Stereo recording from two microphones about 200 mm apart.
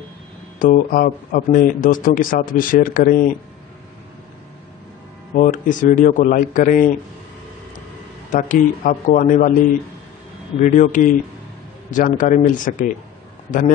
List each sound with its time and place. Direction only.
0.6 s speech: 45° left (ahead or behind)
5.3 s a man's voice: 40° left (ahead or behind)
8.3 s a man's voice: 40° left (ahead or behind)
10.6 s a man's voice: 40° left (ahead or behind)